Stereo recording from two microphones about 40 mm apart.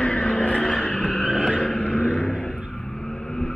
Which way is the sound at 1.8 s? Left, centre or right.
Left.